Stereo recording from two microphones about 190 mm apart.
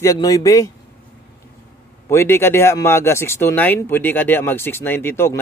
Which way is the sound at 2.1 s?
15° left (ahead or behind).